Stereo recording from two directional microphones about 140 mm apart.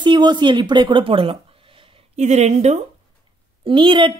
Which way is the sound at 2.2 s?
55° right (ahead or behind).